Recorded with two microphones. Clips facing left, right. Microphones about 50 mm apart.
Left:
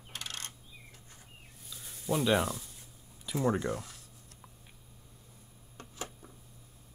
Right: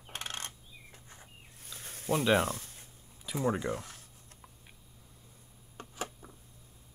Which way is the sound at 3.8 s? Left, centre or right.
Right.